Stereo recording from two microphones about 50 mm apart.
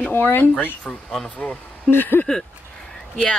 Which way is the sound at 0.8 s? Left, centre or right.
Centre.